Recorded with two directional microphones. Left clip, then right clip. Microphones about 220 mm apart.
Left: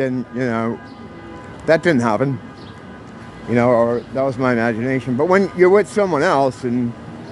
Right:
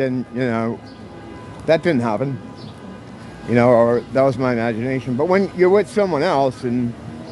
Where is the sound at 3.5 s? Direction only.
5° right (ahead or behind).